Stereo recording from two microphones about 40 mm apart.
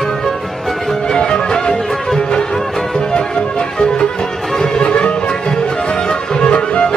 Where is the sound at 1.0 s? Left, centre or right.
Centre.